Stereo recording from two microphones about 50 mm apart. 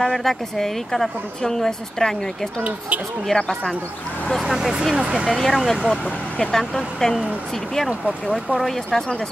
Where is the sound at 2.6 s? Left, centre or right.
Right.